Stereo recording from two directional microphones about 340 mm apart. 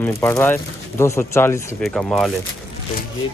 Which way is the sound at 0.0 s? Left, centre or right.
Centre.